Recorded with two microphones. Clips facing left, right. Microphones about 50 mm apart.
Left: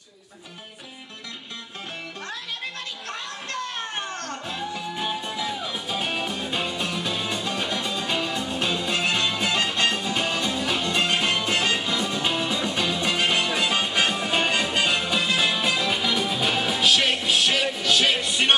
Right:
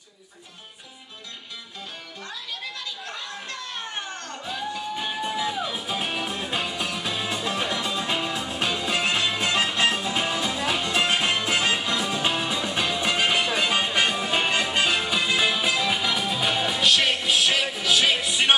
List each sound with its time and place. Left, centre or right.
2.6 s children playing: left
4.9 s music: centre